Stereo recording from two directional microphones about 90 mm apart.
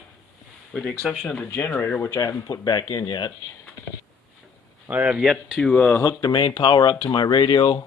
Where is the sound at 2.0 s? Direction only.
40° left (ahead or behind).